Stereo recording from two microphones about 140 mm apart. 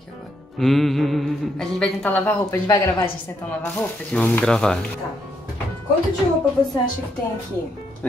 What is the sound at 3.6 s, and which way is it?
Speech, 10° left (ahead or behind).